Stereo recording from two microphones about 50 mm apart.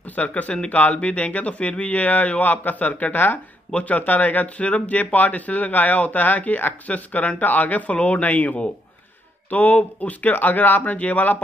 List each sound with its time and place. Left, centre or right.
0.1 s speech: left